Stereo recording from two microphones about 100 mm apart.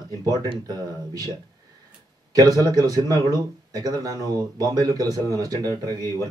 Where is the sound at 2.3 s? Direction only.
40° right (ahead or behind).